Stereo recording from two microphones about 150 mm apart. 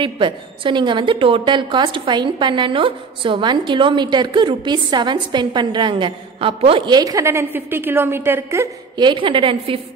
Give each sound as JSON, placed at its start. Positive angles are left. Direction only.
{"t": 0.0, "sound": "a woman's voice", "side_deg": -35}
{"t": 8.9, "sound": "a woman's voice", "side_deg": -30}